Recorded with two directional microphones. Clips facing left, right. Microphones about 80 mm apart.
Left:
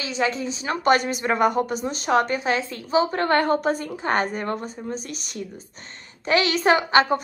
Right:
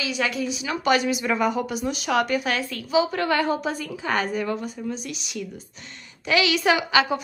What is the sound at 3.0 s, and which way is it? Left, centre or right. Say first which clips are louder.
A woman's voice: left 2 dB; left.